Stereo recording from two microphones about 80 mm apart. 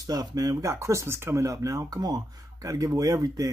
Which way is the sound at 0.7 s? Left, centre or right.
Right.